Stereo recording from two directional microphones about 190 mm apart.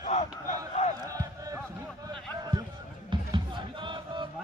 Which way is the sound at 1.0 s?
20° right (ahead or behind).